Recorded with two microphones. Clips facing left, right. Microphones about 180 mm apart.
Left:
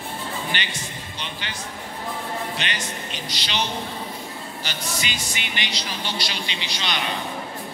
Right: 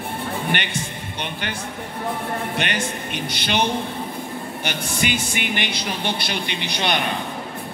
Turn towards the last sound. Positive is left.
turn(degrees=-55)  # may be behind; listen again after turning